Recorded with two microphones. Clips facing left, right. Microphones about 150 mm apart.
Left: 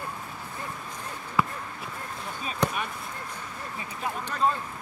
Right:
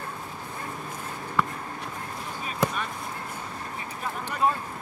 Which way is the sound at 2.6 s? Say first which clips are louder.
Right 1 dB; 5° right (ahead or behind).